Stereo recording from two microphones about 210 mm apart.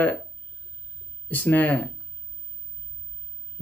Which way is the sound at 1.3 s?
10° left (ahead or behind).